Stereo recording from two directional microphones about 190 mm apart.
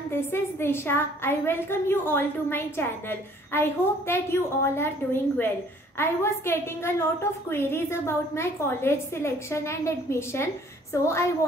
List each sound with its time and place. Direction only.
0.1 s a woman's voice: 10° left (ahead or behind)